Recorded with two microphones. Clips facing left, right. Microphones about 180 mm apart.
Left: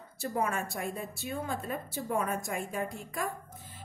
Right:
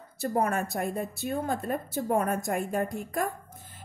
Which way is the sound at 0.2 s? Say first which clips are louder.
Right 5 dB; 45° right (ahead or behind).